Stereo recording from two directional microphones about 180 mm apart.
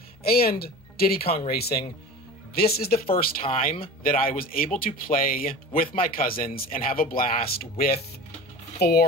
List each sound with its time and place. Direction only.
0.2 s a man's voice: 55° left (ahead or behind)